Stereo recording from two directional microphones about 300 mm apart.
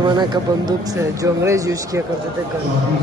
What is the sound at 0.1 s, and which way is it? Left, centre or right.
Speech, centre.